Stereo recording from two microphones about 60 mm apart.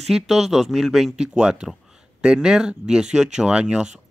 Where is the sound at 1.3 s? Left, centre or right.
Centre.